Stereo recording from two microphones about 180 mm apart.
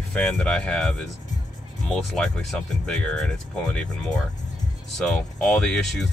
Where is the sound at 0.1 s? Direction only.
5° left (ahead or behind).